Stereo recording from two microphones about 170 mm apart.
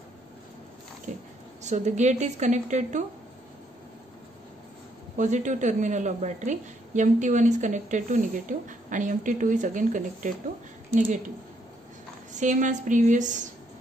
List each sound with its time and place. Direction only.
1.1 s a sound: 45° right (ahead or behind)
1.6 s a woman's voice: 45° right (ahead or behind)
5.1 s a woman's voice: 45° right (ahead or behind)
12.4 s a woman's voice: 45° right (ahead or behind)